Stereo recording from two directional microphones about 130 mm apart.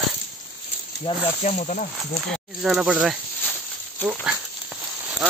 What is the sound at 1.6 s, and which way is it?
Speech, 75° left (ahead or behind).